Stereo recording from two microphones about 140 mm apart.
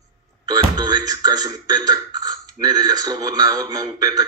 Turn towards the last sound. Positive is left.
turn(degrees=-25)  # may be behind; listen again after turning